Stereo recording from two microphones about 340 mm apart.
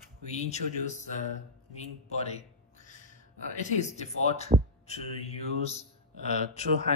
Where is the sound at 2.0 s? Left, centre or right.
Centre.